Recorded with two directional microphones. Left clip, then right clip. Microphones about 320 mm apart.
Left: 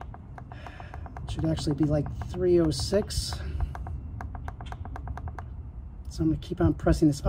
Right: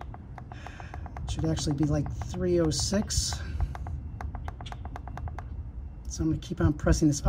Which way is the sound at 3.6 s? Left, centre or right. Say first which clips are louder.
Left 1 dB; centre.